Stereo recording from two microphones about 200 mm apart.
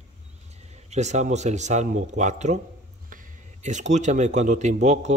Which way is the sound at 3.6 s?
35° right (ahead or behind).